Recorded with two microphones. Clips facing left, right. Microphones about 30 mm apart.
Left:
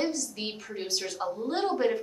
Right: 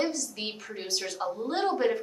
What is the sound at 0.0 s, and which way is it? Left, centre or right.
A woman's voice, centre.